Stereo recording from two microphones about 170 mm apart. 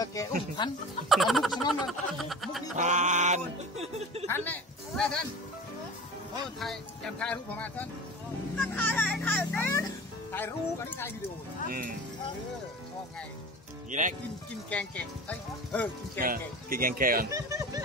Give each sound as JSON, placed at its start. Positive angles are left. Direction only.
{"t": 0.0, "sound": "speech", "side_deg": 20}
{"t": 1.0, "sound": "a sound", "side_deg": 0}
{"t": 2.7, "sound": "speech", "side_deg": -45}
{"t": 4.3, "sound": "speech", "side_deg": 5}
{"t": 6.4, "sound": "speech", "side_deg": 0}
{"t": 13.8, "sound": "speech", "side_deg": -45}
{"t": 14.7, "sound": "speech", "side_deg": 10}
{"t": 16.2, "sound": "speech", "side_deg": -55}
{"t": 17.3, "sound": "speech", "side_deg": -20}